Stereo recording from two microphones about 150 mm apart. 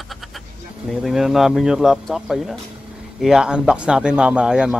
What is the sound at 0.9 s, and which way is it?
Speech, centre (ahead or behind).